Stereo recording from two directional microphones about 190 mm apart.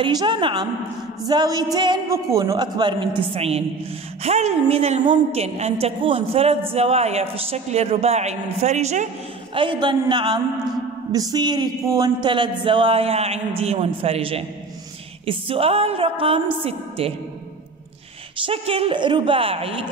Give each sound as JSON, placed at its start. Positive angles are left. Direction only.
{"t": 0.0, "sound": "music", "side_deg": -25}
{"t": 3.2, "sound": "a man's voice", "side_deg": -30}
{"t": 11.1, "sound": "music", "side_deg": -20}
{"t": 16.6, "sound": "a man's voice", "side_deg": -30}
{"t": 18.4, "sound": "music", "side_deg": -30}